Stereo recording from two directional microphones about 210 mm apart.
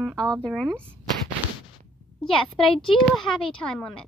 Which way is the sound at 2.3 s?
25° left (ahead or behind).